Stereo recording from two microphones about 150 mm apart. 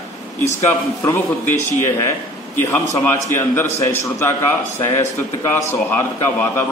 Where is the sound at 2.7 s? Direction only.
15° left (ahead or behind).